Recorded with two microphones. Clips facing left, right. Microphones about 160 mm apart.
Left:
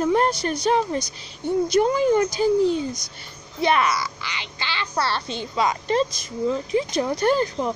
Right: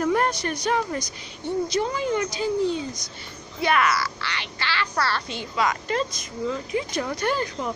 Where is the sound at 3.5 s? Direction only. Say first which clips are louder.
Left 1 dB; 25° left (ahead or behind).